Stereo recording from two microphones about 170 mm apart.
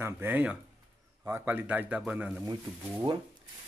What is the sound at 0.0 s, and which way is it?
A man's voice, 10° right (ahead or behind).